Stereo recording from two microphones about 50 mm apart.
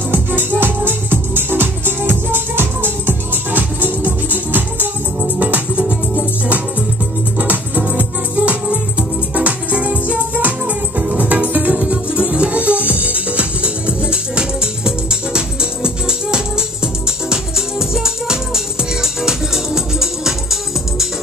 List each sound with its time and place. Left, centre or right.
0.1 s music: right
5.2 s music: right; by 20.3 s centre